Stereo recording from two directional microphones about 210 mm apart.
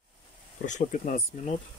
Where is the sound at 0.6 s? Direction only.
35° left (ahead or behind).